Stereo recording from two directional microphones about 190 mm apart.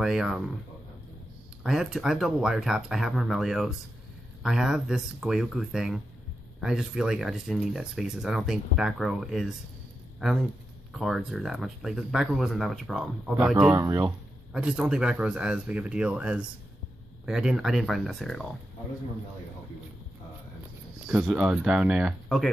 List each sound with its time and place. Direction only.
0.0 s speech: centre (ahead or behind)
1.6 s speech: 5° right (ahead or behind)
10.9 s speech: centre (ahead or behind)
13.7 s speech: 15° right (ahead or behind)
14.5 s speech: 5° right (ahead or behind)
21.1 s speech: 5° right (ahead or behind)